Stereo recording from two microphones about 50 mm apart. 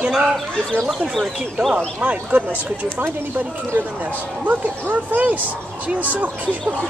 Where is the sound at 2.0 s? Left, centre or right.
Right.